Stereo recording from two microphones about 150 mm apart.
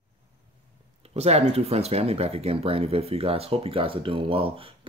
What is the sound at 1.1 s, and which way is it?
Speech, 45° right (ahead or behind).